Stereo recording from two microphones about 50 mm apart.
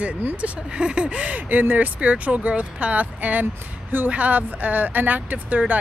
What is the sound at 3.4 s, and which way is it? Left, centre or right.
Speech, right.